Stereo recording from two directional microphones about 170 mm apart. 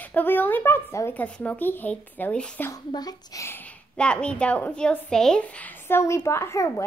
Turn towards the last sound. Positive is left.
turn(degrees=15)  # may be behind; listen again after turning